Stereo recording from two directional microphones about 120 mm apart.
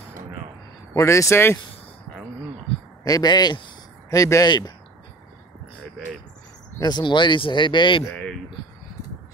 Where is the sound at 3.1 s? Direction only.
35° left (ahead or behind).